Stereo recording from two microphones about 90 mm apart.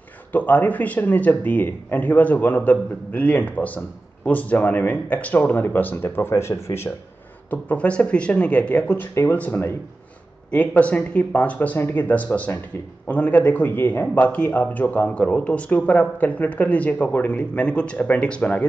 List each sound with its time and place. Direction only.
0.3 s speech: 20° left (ahead or behind)
7.4 s a man's voice: 20° left (ahead or behind)